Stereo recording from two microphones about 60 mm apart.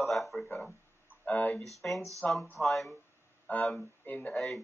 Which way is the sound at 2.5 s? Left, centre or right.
Centre.